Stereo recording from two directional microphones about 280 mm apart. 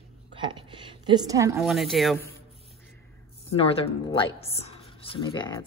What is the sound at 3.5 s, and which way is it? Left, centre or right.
Speech, centre.